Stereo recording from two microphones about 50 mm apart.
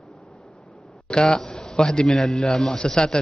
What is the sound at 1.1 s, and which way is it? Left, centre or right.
A man's voice, centre.